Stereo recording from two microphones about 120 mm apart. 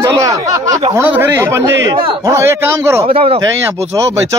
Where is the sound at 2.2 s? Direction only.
25° right (ahead or behind).